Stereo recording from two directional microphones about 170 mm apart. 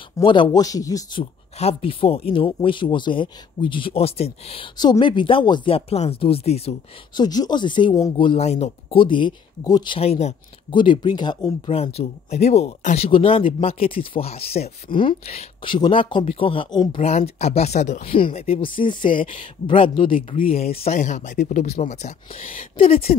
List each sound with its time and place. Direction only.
0.2 s speech: 30° left (ahead or behind)
1.6 s speech: 35° left (ahead or behind)
7.2 s speech: 25° left (ahead or behind)
9.9 s speech: 35° left (ahead or behind)
11.8 s speech: 40° left (ahead or behind)
17.0 s speech: 40° left (ahead or behind)
18.1 s speech: 35° left (ahead or behind)